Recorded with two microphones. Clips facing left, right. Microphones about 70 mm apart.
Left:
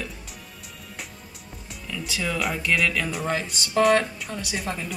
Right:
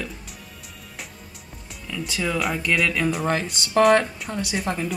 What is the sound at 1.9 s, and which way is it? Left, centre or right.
Speech, centre.